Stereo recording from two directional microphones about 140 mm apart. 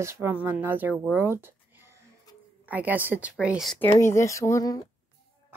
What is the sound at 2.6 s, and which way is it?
Speech, 10° right (ahead or behind).